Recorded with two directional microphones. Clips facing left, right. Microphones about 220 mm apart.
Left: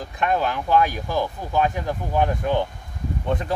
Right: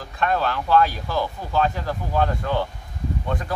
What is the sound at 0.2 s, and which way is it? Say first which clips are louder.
Speech: even; 15° left (ahead or behind).